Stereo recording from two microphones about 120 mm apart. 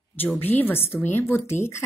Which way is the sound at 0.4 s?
15° left (ahead or behind).